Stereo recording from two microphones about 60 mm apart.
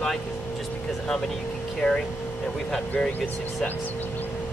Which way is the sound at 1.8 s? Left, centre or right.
Centre.